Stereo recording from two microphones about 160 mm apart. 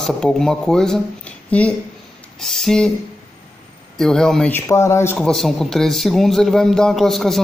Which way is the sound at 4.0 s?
5° left (ahead or behind).